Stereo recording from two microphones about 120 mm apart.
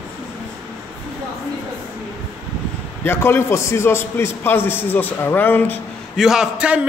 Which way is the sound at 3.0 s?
20° left (ahead or behind).